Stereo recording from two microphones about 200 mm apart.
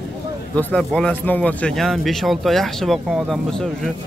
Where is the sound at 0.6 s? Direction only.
5° left (ahead or behind).